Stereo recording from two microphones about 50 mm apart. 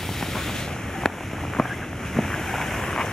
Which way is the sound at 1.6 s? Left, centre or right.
Centre.